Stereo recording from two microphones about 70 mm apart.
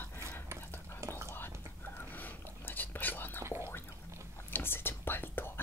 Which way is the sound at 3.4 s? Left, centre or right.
Right.